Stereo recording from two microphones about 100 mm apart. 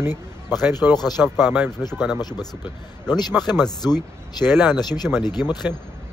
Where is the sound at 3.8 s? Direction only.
45° left (ahead or behind).